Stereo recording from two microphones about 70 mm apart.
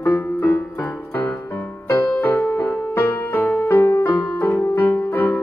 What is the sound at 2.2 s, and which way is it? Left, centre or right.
Music, left.